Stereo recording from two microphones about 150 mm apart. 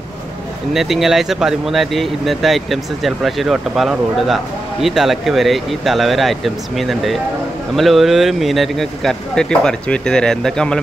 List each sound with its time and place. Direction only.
0.7 s speech: centre (ahead or behind)